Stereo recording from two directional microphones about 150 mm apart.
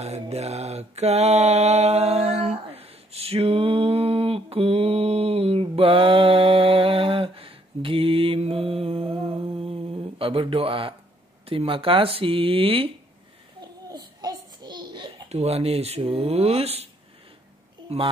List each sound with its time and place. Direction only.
0.0 s mantra: 45° right (ahead or behind)
11.4 s speech: 35° right (ahead or behind)
13.6 s babbling: 25° right (ahead or behind)
15.2 s speech: 45° right (ahead or behind)
17.8 s a child's voice: 40° right (ahead or behind)